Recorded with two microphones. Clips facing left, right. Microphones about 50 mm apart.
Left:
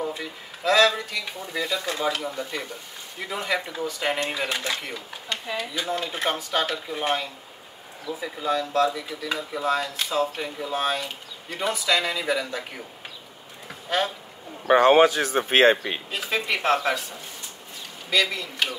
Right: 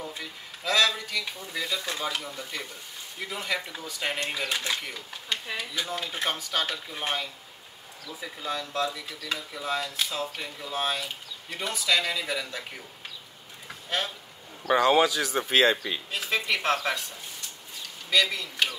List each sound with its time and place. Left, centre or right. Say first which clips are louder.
0.1 s speech: left 5 dB; centre
5.3 s speech: left 3 dB; centre
5.8 s speech: left 3 dB; centre
13.7 s a sound: left 5 dB; centre
14.7 s speech: left 5 dB; left
16.1 s speech: left 1 dB; centre
18.1 s speech: left 1 dB; centre